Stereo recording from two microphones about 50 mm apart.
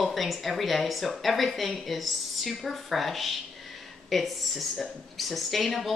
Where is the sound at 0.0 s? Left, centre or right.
Centre.